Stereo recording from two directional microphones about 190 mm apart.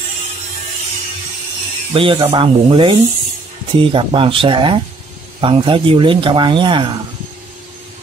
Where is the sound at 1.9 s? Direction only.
25° right (ahead or behind).